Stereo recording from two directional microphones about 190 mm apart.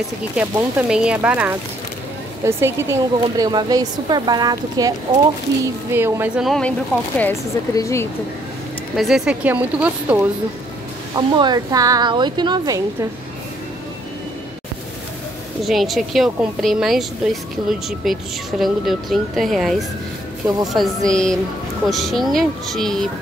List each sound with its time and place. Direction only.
0.4 s a woman's voice: 5° right (ahead or behind)
7.2 s speech: 15° left (ahead or behind)
8.9 s a woman's voice: centre (ahead or behind)
11.1 s speech: 20° right (ahead or behind)
15.6 s a woman's voice: centre (ahead or behind)